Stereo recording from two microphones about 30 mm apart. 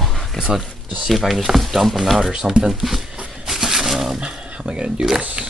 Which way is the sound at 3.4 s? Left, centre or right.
Centre.